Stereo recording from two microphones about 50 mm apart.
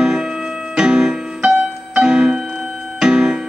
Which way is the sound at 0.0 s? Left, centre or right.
Centre.